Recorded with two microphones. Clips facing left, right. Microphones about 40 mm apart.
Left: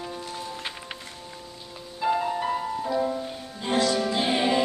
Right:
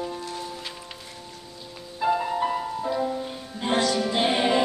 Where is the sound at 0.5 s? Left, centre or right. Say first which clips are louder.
Left 2 dB; left.